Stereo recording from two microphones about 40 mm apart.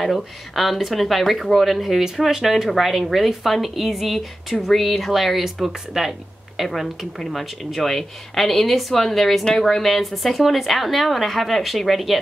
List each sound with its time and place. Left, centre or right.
0.0 s speech: centre